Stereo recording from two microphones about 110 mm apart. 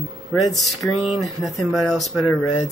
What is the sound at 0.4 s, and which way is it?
Speech, centre (ahead or behind).